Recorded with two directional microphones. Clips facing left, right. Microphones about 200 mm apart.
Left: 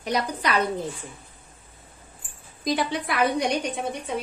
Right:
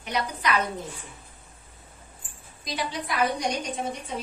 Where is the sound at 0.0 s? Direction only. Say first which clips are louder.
Left 3 dB; 35° left (ahead or behind).